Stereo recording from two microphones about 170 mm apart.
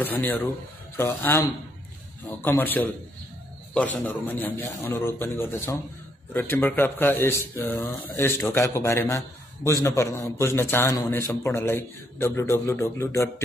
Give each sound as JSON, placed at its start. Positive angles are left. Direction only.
{"t": 0.0, "sound": "speech", "side_deg": 10}